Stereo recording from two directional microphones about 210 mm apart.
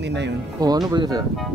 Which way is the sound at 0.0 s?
55° right (ahead or behind).